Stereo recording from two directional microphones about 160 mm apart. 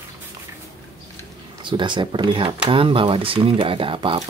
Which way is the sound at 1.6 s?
30° right (ahead or behind).